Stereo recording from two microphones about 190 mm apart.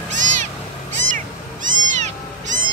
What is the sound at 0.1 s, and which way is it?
Cat, 40° right (ahead or behind).